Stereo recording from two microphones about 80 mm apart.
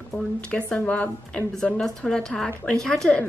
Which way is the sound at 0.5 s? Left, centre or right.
Centre.